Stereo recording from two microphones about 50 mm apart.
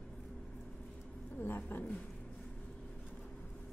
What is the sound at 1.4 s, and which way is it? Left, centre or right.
Cat, left.